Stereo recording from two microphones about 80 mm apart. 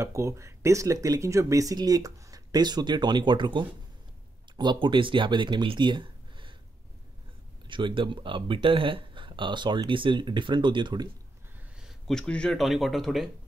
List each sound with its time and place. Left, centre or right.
0.0 s speech: right
7.6 s speech: right
12.1 s speech: centre
12.5 s speech: centre